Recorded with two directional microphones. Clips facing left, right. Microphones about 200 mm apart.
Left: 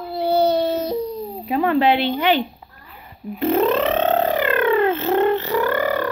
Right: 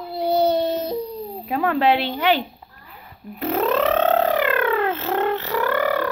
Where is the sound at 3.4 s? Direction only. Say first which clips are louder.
Left 3 dB; centre (ahead or behind).